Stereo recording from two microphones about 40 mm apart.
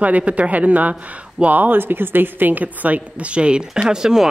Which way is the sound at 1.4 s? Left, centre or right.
Right.